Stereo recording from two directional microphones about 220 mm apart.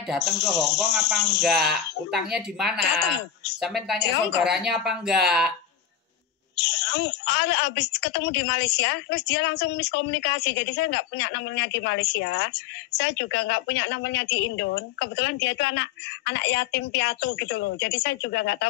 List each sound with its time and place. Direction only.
0.1 s speech: centre (ahead or behind)
0.7 s a woman's voice: 50° left (ahead or behind)
1.4 s speech: centre (ahead or behind)
6.5 s a woman's voice: 50° left (ahead or behind)